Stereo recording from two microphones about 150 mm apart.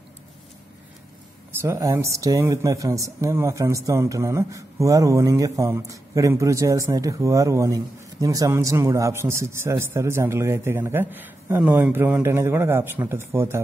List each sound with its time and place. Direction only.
1.6 s speech: 20° right (ahead or behind)